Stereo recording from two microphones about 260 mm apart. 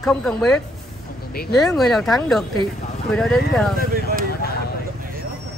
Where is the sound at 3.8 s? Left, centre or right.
Right.